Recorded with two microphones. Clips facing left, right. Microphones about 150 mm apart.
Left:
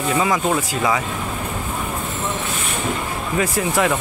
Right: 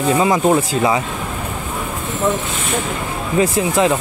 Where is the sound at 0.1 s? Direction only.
25° right (ahead or behind).